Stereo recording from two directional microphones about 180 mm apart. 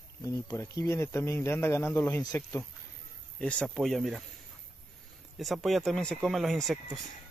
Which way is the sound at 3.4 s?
5° left (ahead or behind).